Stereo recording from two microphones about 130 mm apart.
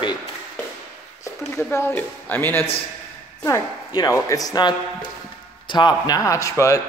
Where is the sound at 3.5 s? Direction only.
25° left (ahead or behind).